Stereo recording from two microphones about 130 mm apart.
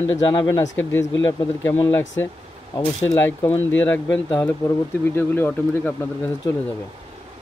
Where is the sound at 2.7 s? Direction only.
20° left (ahead or behind).